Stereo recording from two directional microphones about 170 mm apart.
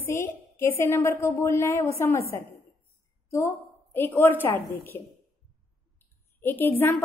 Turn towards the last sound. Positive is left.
turn(degrees=10)  # may be behind; listen again after turning